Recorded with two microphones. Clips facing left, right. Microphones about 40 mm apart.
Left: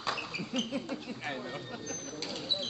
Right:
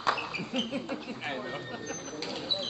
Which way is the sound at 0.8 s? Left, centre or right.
Right.